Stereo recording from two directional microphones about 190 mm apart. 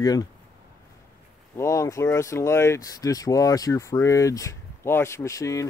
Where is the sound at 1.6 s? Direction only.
15° left (ahead or behind).